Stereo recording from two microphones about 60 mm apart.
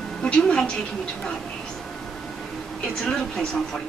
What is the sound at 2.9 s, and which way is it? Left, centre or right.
Speech, centre.